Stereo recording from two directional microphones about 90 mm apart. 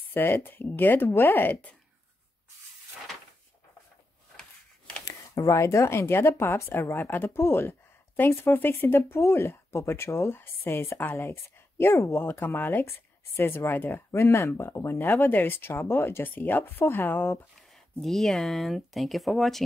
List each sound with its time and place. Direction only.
0.1 s speech: 25° left (ahead or behind)
4.4 s a sound: 10° left (ahead or behind)
5.0 s speech: 40° left (ahead or behind); by 17.4 s 25° left (ahead or behind)
17.6 s speech: 5° left (ahead or behind)